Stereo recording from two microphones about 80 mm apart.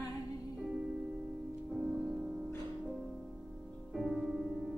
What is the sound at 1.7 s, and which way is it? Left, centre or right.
Music, centre.